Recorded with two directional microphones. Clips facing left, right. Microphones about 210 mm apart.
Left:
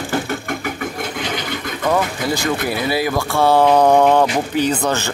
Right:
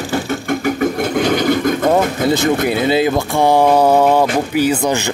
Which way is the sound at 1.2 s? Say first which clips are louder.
Right 13 dB; 45° right (ahead or behind).